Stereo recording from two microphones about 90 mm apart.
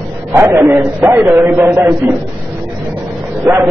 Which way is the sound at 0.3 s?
35° right (ahead or behind).